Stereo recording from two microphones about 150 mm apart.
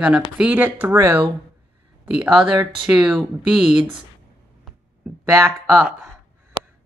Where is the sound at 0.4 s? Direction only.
10° right (ahead or behind).